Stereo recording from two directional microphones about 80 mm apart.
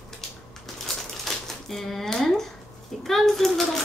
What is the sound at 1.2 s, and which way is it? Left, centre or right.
Typewriter, centre.